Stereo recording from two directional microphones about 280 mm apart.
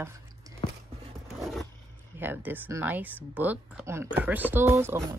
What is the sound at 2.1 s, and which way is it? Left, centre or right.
Speech, centre.